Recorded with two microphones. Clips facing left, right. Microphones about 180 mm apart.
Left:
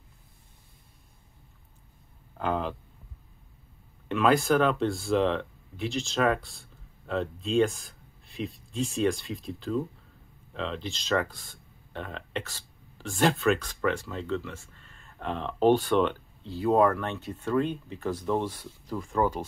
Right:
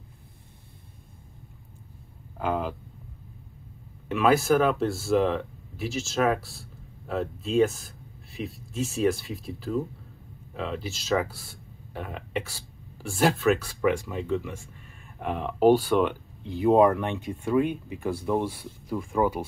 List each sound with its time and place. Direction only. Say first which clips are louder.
2.3 s speech: right 1 dB; 5° right (ahead or behind)
4.1 s speech: right 2 dB; 5° right (ahead or behind)